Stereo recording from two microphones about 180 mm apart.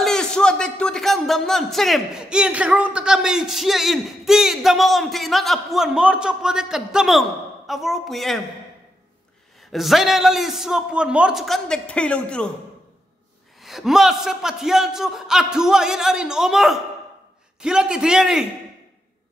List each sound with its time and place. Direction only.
0.0 s speech: 5° left (ahead or behind)
9.7 s a man's voice: centre (ahead or behind)
13.6 s a man's voice: centre (ahead or behind)